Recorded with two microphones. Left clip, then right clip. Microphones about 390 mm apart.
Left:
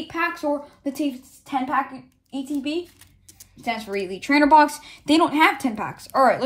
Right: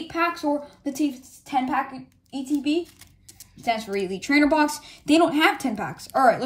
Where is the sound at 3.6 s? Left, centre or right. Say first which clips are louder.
Right 1 dB; centre.